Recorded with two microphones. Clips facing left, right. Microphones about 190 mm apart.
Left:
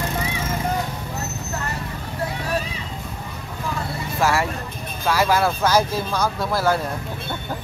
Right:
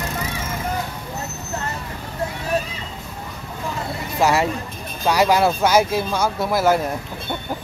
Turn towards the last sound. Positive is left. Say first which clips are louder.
# right 3 dB
turn(degrees=-10)  # may be behind; listen again after turning